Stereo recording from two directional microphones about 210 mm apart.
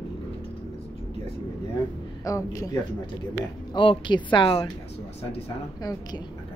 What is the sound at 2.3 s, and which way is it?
A woman's voice, 15° left (ahead or behind).